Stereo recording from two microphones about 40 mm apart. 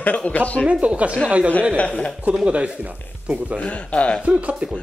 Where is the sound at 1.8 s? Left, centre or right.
Left.